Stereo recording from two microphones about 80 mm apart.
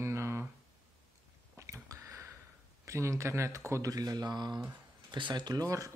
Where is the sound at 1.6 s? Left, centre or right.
Right.